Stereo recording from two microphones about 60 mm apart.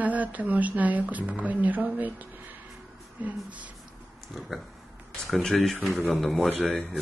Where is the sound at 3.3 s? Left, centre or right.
Right.